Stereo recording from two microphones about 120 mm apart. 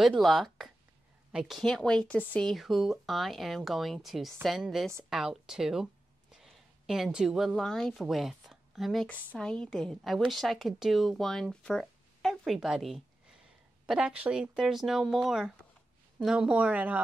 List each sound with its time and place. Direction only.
0.0 s a woman's voice: centre (ahead or behind)
2.5 s a woman's voice: centre (ahead or behind)